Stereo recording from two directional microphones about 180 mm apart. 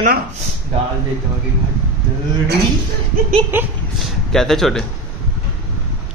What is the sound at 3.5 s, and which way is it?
Speech, 10° right (ahead or behind).